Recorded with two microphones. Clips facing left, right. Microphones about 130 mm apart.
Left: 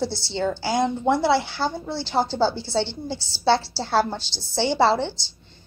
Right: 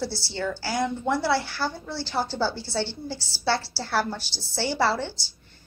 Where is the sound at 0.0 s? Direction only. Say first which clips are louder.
Left 5 dB; 20° left (ahead or behind).